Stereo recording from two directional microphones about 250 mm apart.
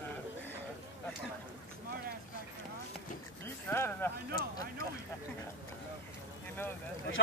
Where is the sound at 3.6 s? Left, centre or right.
Centre.